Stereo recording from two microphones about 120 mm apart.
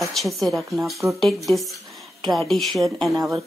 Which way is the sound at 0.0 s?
Centre (ahead or behind).